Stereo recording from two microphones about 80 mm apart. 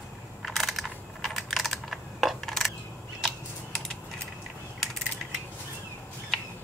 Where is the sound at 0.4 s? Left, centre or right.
Centre.